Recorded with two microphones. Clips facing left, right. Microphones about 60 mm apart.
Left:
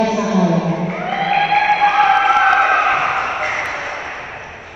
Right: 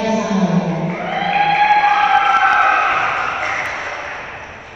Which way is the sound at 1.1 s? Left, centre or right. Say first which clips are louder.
Even; left.